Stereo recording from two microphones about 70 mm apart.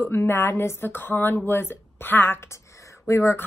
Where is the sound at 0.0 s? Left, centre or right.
Left.